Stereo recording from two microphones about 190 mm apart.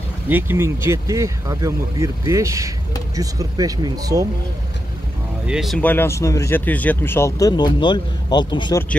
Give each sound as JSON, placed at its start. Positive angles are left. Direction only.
{"t": 0.3, "sound": "speech", "side_deg": -10}
{"t": 5.5, "sound": "speech", "side_deg": 0}
{"t": 5.8, "sound": "speech", "side_deg": 10}